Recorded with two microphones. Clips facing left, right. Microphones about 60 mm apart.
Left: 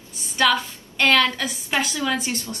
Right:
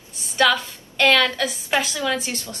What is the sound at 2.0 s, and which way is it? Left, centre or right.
Speech, left.